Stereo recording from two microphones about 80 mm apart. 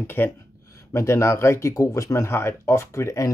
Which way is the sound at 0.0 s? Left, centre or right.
Left.